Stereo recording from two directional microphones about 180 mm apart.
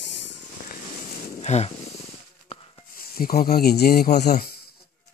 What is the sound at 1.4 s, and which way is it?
Wild animals, 40° left (ahead or behind).